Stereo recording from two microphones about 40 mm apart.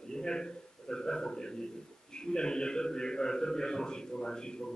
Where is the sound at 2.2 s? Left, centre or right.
Centre.